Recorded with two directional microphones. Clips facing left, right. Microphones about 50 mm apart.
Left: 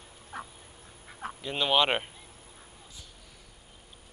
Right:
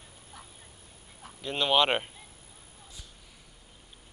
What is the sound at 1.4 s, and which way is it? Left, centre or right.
Speech, centre.